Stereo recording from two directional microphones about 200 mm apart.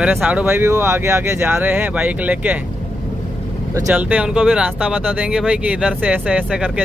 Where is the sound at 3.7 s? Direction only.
5° right (ahead or behind).